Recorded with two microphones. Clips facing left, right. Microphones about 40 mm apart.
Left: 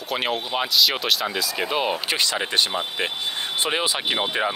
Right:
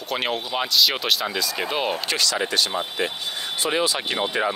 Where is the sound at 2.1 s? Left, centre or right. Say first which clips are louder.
Even; left.